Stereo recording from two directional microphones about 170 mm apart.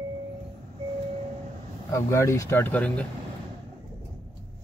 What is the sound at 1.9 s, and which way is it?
Speech, 15° left (ahead or behind).